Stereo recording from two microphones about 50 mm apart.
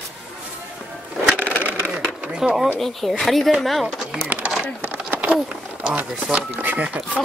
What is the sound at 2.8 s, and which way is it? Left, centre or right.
Speech, centre.